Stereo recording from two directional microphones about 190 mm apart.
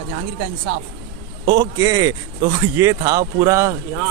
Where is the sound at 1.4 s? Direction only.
25° right (ahead or behind).